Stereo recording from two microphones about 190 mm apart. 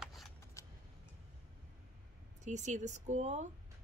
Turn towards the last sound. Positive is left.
turn(degrees=-40)  # may be behind; listen again after turning